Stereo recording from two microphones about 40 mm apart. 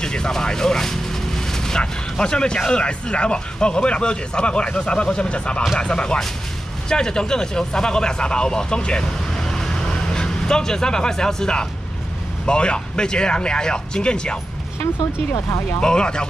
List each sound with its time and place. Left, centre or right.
0.0 s speech: centre
9.4 s vehicle: centre
12.4 s speech: left
15.8 s speech: left